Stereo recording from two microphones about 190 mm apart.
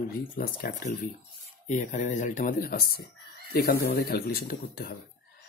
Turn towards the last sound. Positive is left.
turn(degrees=55)  # may be behind; listen again after turning